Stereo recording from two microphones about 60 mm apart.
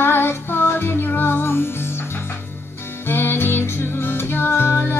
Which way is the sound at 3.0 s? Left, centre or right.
Left.